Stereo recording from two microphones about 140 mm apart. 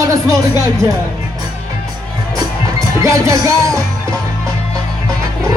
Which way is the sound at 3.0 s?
20° right (ahead or behind).